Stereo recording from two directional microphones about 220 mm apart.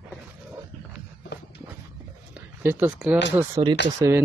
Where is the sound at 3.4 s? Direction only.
15° right (ahead or behind).